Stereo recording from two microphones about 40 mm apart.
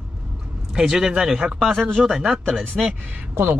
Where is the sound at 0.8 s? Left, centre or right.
Centre.